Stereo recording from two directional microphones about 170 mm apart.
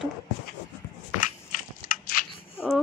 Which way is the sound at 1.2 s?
55° left (ahead or behind).